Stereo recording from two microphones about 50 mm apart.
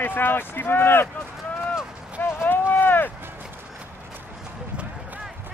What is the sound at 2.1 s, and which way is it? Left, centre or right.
Run, left.